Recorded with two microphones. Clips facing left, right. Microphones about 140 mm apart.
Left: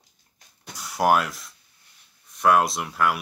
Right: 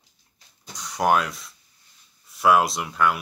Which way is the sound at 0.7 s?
5° left (ahead or behind).